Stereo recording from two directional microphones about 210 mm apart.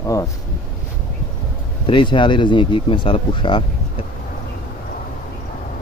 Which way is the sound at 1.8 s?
25° left (ahead or behind).